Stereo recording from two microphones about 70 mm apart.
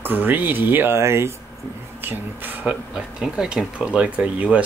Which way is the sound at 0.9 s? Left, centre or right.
Right.